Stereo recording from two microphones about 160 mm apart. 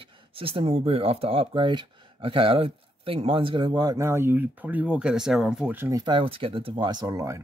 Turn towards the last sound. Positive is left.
turn(degrees=-20)  # may be behind; listen again after turning